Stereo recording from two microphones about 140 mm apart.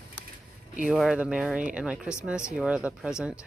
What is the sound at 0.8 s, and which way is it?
Speech, 5° right (ahead or behind).